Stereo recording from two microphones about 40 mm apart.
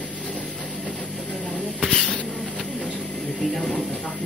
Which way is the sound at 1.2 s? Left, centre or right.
Left.